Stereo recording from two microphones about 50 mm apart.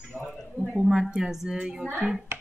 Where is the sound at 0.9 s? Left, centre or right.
Centre.